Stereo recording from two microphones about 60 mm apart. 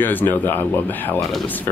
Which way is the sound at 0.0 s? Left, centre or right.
Left.